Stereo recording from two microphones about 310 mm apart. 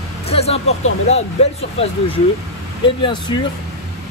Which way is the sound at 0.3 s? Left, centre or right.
Centre.